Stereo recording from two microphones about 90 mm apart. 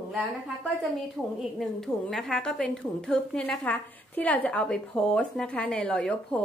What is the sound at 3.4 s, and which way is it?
Speech, 15° left (ahead or behind).